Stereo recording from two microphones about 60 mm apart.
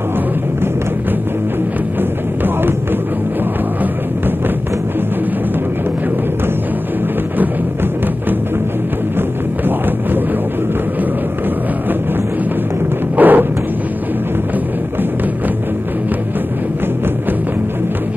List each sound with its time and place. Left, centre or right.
2.0 s music: right
13.1 s music: right